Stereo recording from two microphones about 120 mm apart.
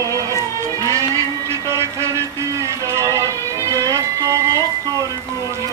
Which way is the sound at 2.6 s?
25° right (ahead or behind).